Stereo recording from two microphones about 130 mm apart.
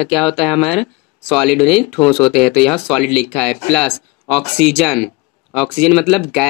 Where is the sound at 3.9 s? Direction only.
50° left (ahead or behind).